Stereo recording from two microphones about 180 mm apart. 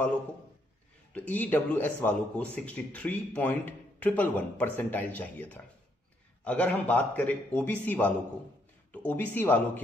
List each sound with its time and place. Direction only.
1.1 s speech: 10° left (ahead or behind)